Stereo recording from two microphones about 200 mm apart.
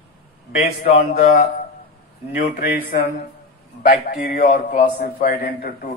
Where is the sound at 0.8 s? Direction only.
30° left (ahead or behind).